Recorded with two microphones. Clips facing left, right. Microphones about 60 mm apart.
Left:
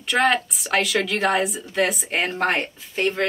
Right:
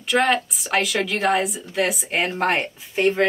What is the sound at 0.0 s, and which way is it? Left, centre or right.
A woman's voice, centre.